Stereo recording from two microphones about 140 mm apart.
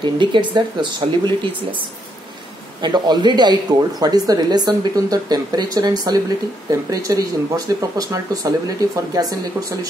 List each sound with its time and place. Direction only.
0.0 s speech: 35° right (ahead or behind)
2.8 s speech: 30° right (ahead or behind)